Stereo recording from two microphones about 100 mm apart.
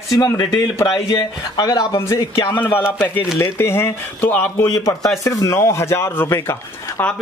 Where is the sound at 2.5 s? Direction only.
20° left (ahead or behind).